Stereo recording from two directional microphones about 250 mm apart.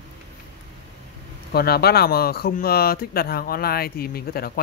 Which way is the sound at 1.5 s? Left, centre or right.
Left.